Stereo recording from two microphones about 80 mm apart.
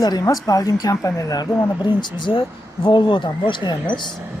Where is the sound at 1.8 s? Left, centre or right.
Left.